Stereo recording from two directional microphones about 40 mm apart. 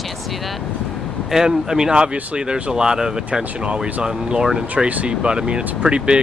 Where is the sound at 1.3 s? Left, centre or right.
Centre.